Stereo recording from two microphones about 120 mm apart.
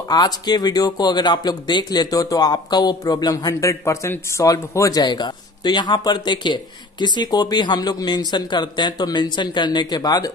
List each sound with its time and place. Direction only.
0.1 s speech: 35° left (ahead or behind)
5.0 s speech: 40° left (ahead or behind)